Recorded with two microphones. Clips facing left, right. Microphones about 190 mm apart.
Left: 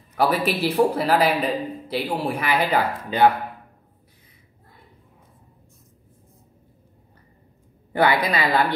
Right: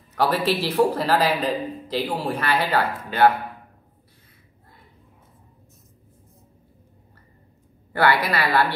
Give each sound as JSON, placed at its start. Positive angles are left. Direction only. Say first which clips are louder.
{"t": 0.1, "sound": "a man's voice", "louder": "even", "side_deg": 10}
{"t": 7.9, "sound": "a man's voice", "louder": "left 1 dB", "side_deg": 15}